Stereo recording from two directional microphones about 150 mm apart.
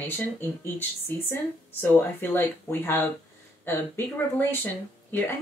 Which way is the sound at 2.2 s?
15° left (ahead or behind).